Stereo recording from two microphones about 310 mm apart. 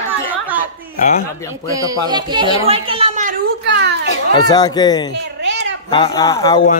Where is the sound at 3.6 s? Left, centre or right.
Right.